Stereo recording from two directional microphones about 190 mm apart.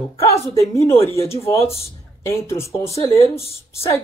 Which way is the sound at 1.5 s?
30° left (ahead or behind).